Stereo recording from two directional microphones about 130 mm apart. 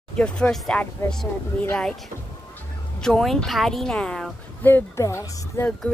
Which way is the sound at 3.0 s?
Centre (ahead or behind).